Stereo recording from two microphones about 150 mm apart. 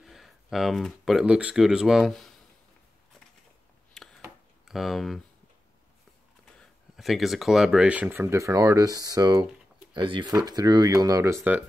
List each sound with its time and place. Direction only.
0.0 s speech: centre (ahead or behind)
4.0 s a sound: centre (ahead or behind)
4.6 s speech: centre (ahead or behind)
6.6 s speech: centre (ahead or behind)